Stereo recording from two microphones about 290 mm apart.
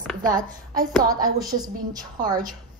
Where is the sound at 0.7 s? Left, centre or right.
Centre.